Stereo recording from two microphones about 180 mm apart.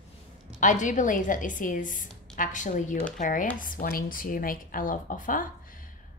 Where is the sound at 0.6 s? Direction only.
45° left (ahead or behind).